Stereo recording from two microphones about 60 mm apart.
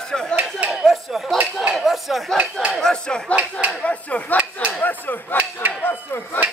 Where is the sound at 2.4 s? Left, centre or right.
Centre.